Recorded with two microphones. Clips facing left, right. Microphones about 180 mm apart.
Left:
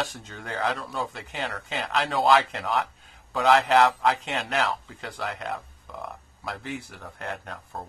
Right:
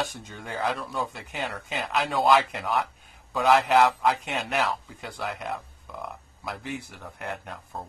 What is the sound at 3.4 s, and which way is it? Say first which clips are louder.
Speech: even; 10° right (ahead or behind).